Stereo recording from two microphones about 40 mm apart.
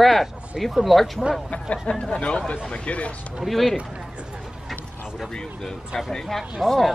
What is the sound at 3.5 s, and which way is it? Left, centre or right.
Speech, centre.